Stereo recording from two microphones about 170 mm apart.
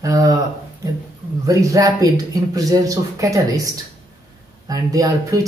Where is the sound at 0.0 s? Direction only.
20° right (ahead or behind).